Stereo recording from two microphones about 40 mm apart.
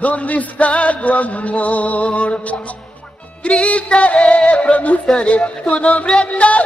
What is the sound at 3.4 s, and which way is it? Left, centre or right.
Music, left.